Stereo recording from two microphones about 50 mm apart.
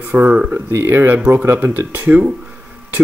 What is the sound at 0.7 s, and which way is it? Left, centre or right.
Speech, right.